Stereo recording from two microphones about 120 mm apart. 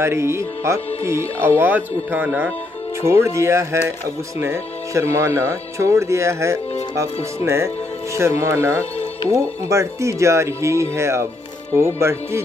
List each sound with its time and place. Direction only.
0.0 s speech: 20° right (ahead or behind)